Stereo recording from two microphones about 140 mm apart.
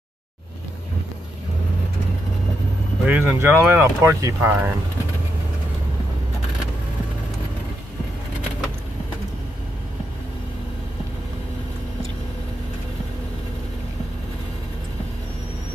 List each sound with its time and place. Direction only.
3.1 s speech: 10° right (ahead or behind)